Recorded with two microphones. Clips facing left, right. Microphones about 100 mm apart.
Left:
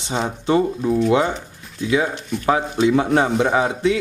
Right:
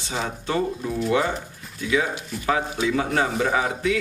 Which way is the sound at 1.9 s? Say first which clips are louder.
Left 4 dB; 20° left (ahead or behind).